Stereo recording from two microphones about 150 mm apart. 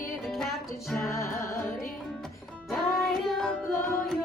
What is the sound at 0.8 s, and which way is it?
Music, centre (ahead or behind).